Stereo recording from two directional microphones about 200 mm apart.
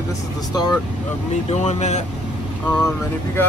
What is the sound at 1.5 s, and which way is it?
Speech, 35° left (ahead or behind).